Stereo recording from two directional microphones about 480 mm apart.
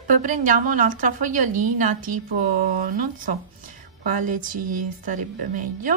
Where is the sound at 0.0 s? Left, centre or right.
Centre.